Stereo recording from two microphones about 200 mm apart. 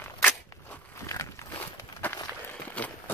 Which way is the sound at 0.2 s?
10° left (ahead or behind).